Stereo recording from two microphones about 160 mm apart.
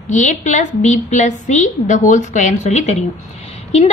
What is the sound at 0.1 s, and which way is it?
A woman's voice, 50° left (ahead or behind).